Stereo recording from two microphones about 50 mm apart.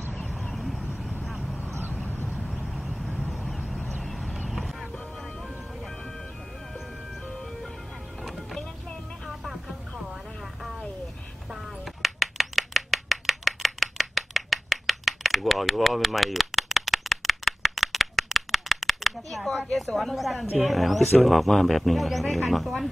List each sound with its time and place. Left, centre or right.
0.3 s vehicle: centre
2.0 s vehicle: left
2.7 s vehicle: centre
8.2 s vehicle: centre
9.3 s music: centre
11.5 s a sound: centre